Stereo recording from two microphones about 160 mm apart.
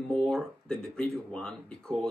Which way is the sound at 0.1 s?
5° left (ahead or behind).